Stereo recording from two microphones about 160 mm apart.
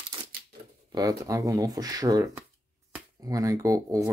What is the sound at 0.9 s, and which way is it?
Speech, 20° right (ahead or behind).